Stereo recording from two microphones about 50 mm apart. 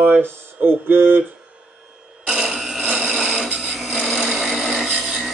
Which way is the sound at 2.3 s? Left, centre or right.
Centre.